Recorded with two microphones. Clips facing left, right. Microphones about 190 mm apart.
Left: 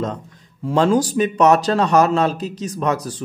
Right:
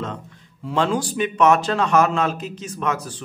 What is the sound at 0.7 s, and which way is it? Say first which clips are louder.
Speech: left 5 dB; 40° left (ahead or behind).